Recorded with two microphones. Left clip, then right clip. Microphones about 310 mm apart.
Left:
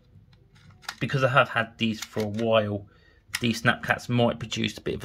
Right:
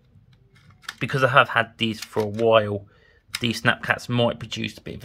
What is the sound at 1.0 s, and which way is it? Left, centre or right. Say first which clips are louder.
Speech: right 4 dB; centre.